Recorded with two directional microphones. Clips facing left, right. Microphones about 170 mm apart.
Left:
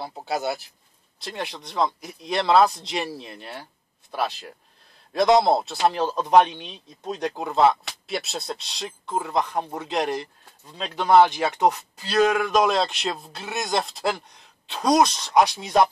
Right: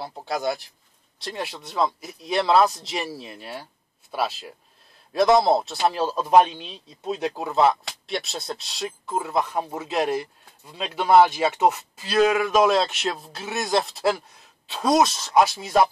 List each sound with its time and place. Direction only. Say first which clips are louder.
0.0 s speech: even; 5° left (ahead or behind)